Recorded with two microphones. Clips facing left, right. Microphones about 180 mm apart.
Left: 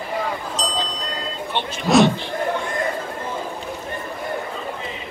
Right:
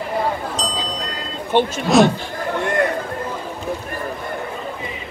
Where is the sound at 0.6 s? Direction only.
Centre (ahead or behind).